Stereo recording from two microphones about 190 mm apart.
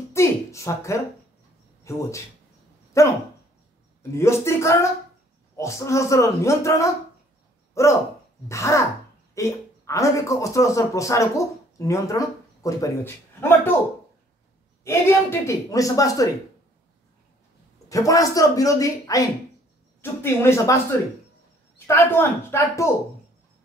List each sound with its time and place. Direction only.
0.1 s a sound: 15° left (ahead or behind)
1.9 s speech: 15° left (ahead or behind)
14.9 s speech: 15° left (ahead or behind)
17.8 s speech: 15° left (ahead or behind)